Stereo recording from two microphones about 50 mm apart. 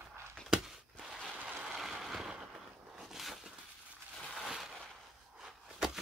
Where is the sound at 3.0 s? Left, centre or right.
Centre.